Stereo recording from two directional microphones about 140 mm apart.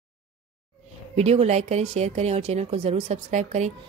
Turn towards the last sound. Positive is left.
turn(degrees=-55)  # may be behind; listen again after turning